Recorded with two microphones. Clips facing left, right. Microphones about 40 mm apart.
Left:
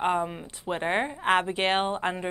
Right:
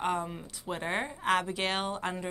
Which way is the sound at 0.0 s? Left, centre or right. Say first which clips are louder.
Left 5 dB; left.